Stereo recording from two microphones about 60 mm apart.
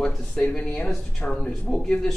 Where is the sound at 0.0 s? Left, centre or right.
Centre.